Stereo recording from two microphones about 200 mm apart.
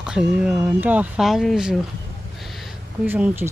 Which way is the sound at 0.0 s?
5° right (ahead or behind).